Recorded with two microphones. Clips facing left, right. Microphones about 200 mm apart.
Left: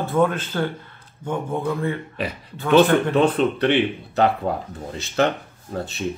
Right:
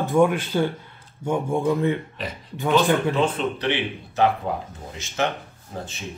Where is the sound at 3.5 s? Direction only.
55° left (ahead or behind).